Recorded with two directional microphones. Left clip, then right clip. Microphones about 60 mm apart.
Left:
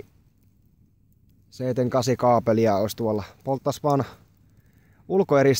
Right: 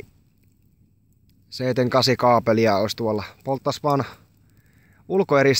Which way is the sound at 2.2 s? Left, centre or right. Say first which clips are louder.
Left 1 dB; centre.